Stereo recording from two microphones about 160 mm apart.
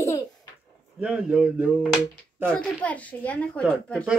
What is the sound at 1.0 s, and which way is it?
Speech, 5° right (ahead or behind).